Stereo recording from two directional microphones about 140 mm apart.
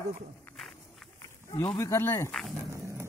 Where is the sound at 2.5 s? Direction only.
20° right (ahead or behind).